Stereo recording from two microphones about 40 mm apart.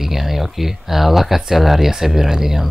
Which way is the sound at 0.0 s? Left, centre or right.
Centre.